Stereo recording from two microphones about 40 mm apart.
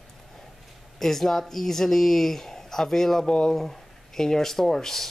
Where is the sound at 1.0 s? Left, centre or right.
Centre.